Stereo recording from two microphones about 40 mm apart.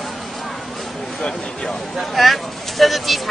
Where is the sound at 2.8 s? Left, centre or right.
Centre.